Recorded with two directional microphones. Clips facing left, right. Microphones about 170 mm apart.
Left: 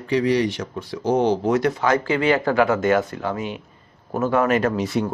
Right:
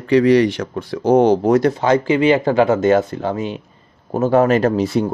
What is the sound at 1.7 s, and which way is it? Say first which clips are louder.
Speech: right 5 dB; 25° right (ahead or behind).